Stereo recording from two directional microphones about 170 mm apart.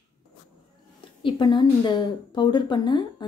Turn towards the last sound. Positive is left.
turn(degrees=25)  # may be behind; listen again after turning